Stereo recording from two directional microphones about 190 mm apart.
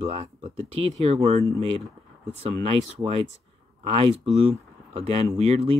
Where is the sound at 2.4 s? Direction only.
30° right (ahead or behind).